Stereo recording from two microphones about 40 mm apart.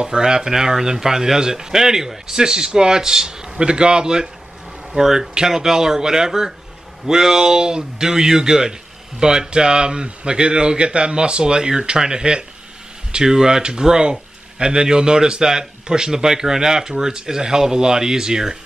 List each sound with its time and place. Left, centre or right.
0.0 s speech: centre